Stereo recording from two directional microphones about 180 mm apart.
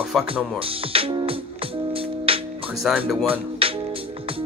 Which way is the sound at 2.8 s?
Centre (ahead or behind).